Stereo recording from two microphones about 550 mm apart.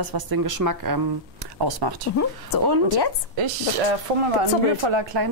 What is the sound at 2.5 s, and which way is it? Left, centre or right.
Speech, left.